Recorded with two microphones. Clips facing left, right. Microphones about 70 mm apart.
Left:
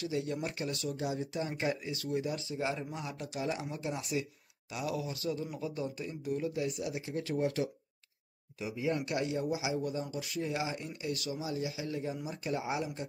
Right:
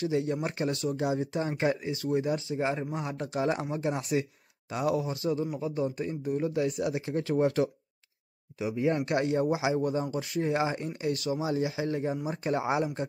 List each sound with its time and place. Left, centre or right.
0.2 s speech: right
6.5 s speech: right
8.5 s speech: right